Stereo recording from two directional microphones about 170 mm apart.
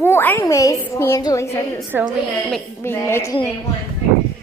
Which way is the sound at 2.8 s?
15° left (ahead or behind).